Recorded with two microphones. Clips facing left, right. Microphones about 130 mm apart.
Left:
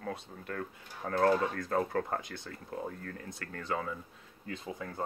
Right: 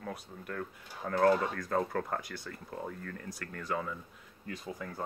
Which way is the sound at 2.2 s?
20° left (ahead or behind).